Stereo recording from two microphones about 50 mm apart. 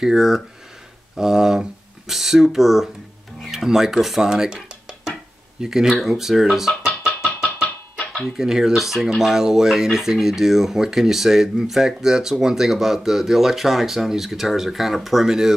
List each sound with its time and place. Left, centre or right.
0.0 s speech: centre
4.3 s a sound: centre
5.6 s speech: centre
7.6 s music: left
8.4 s speech: centre